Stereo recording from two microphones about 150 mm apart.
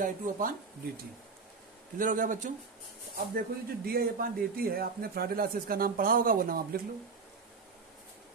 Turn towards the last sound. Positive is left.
turn(degrees=-70)  # may be behind; listen again after turning